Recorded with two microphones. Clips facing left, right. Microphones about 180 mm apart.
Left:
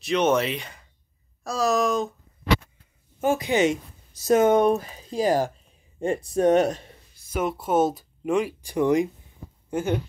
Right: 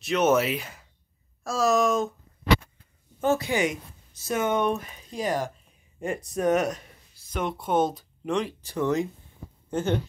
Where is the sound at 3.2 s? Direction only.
15° left (ahead or behind).